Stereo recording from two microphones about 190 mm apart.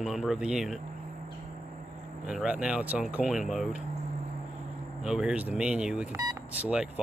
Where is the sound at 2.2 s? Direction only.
5° right (ahead or behind).